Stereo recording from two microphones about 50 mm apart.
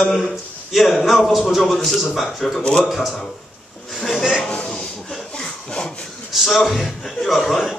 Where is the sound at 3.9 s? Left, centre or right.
Centre.